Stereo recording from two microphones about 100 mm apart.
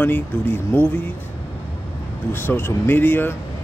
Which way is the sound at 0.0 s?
20° left (ahead or behind).